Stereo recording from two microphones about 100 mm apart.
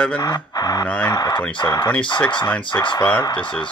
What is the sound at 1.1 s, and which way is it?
Speech, 40° left (ahead or behind).